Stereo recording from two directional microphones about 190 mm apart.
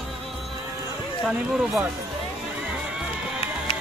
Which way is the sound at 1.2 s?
5° right (ahead or behind).